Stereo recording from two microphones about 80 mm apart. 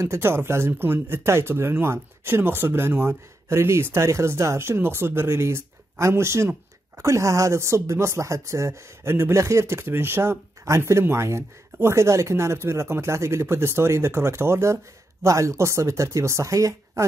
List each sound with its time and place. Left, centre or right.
0.0 s speech: right